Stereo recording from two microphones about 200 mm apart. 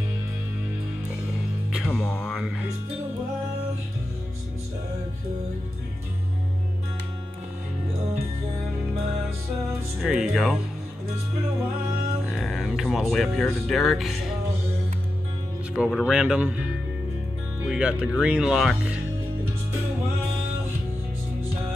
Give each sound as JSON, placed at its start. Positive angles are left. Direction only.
{"t": 1.7, "sound": "speech", "side_deg": 0}
{"t": 9.9, "sound": "speech", "side_deg": 0}
{"t": 12.3, "sound": "speech", "side_deg": 0}
{"t": 15.8, "sound": "speech", "side_deg": -5}
{"t": 17.6, "sound": "speech", "side_deg": -5}